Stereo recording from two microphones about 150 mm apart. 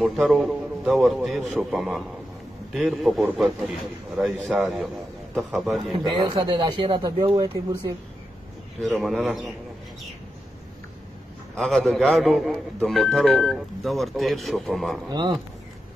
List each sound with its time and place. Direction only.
0.0 s a man's voice: centre (ahead or behind)
5.8 s speech: 35° right (ahead or behind)
8.8 s speech: centre (ahead or behind)
11.5 s speech: centre (ahead or behind)
15.0 s speech: 30° right (ahead or behind)